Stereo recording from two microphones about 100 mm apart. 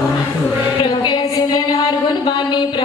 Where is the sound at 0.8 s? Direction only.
50° left (ahead or behind).